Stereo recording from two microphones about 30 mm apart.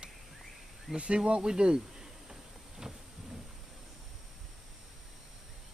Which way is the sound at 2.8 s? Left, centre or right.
Centre.